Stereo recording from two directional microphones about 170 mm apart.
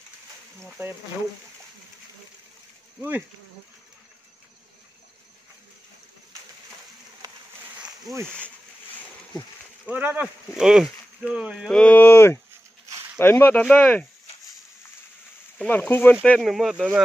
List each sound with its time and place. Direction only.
3.0 s speech: 10° right (ahead or behind)
7.2 s a sound: 20° right (ahead or behind)
9.8 s speech: 10° right (ahead or behind); by 14.0 s 10° left (ahead or behind)
15.6 s speech: 5° left (ahead or behind)
16.3 s speech: centre (ahead or behind)